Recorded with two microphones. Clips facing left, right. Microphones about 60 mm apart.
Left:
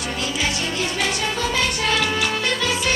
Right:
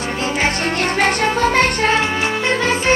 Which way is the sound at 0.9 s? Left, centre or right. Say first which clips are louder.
Right 7 dB; right.